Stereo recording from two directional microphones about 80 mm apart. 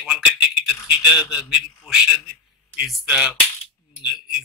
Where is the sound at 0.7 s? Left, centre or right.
Centre.